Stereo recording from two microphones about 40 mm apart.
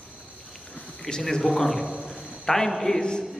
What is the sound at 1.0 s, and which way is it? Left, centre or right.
Speech, centre.